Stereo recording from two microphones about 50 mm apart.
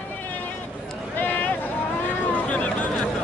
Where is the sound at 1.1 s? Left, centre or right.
Left.